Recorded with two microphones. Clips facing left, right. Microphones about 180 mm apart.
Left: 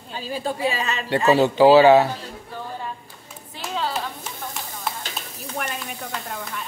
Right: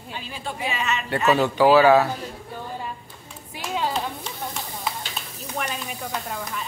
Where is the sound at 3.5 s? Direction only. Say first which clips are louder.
Right 1 dB; 15° right (ahead or behind).